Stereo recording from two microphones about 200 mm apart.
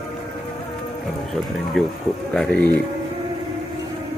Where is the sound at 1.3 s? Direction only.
Centre (ahead or behind).